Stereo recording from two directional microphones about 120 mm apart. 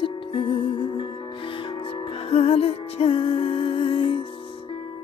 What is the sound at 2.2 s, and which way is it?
Music, 60° left (ahead or behind).